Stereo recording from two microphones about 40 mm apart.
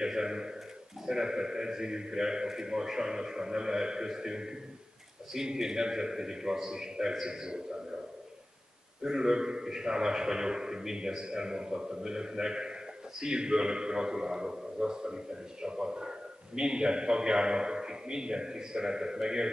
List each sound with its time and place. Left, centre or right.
0.0 s a man's voice: centre
9.0 s a man's voice: centre